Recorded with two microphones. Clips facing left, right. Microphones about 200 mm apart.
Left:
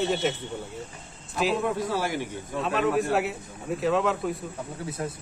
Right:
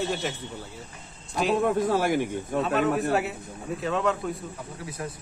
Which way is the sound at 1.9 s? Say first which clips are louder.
Right 5 dB; 50° right (ahead or behind).